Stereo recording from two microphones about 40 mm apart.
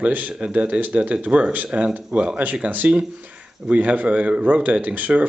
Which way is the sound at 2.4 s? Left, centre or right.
Right.